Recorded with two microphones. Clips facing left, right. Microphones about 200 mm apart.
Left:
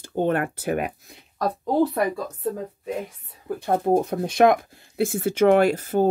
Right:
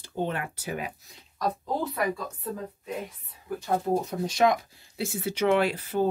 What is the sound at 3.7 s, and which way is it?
Speech, 55° left (ahead or behind).